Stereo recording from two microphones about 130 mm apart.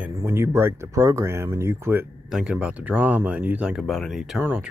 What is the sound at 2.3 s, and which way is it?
Speech, 5° right (ahead or behind).